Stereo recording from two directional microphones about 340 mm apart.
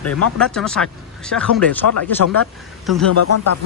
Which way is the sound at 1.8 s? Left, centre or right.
Left.